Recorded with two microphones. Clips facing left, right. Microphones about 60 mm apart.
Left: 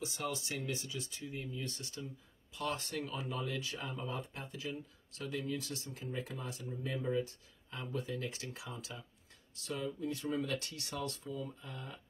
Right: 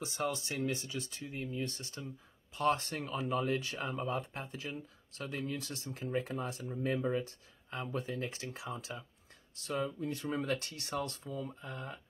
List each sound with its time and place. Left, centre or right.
0.0 s speech: right